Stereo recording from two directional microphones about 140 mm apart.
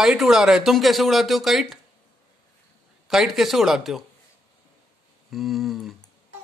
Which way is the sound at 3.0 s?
5° right (ahead or behind).